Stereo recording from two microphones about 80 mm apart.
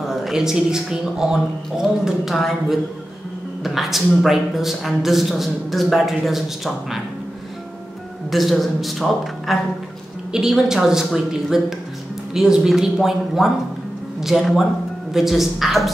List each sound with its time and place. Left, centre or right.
0.0 s a man's voice: centre
8.3 s a man's voice: centre